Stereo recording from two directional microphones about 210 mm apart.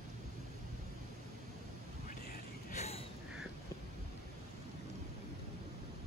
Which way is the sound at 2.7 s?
30° left (ahead or behind).